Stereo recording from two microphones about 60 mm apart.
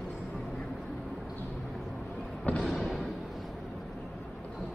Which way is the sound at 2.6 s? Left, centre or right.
Centre.